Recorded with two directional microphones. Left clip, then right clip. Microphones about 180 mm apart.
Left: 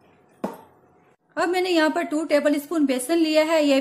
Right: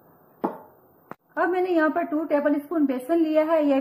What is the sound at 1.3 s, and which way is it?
A woman's voice, 25° left (ahead or behind).